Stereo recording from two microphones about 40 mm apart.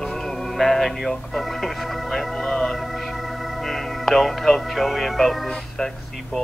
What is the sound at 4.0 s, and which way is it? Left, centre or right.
Speech, centre.